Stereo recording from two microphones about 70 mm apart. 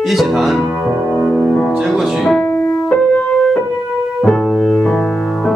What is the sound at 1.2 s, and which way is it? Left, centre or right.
Music, centre.